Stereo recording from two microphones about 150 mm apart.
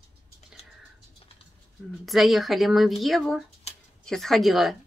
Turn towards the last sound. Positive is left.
turn(degrees=0)  # may be behind; listen again after turning